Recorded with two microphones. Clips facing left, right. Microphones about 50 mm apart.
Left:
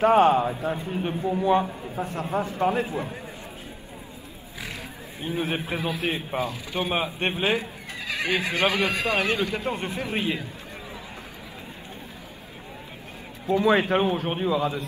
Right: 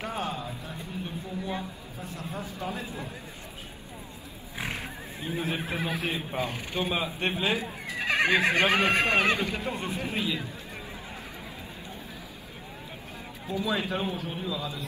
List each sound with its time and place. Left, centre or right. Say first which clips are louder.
0.0 s a man's voice: left 15 dB; left
2.4 s a man's voice: left 12 dB; left
5.2 s a man's voice: left 4 dB; left
6.9 s speech: left 4 dB; left
8.0 s speech: right 3 dB; right
9.4 s a man's voice: left 4 dB; left
13.5 s a man's voice: left 9 dB; left